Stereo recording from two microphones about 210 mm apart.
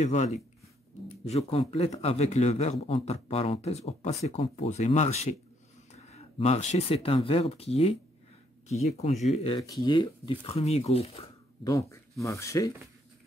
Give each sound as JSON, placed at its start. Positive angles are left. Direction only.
{"t": 0.0, "sound": "speech", "side_deg": 35}
{"t": 11.6, "sound": "speech", "side_deg": 15}